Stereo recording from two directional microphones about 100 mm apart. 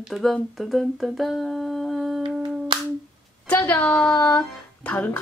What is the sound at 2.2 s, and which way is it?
Humming, 45° right (ahead or behind).